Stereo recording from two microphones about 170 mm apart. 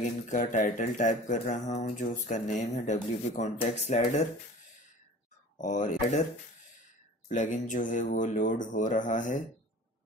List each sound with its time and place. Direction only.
0.3 s speech: 50° left (ahead or behind)
5.6 s speech: 50° left (ahead or behind)
7.3 s speech: 50° left (ahead or behind)